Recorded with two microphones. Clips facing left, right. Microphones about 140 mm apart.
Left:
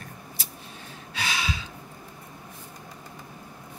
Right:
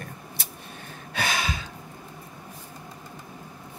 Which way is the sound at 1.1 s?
50° right (ahead or behind).